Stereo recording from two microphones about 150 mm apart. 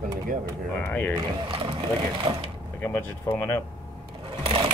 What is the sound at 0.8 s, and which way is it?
Speech, 10° left (ahead or behind).